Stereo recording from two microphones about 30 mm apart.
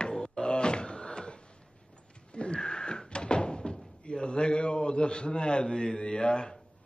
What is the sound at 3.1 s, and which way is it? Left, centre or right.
Door, left.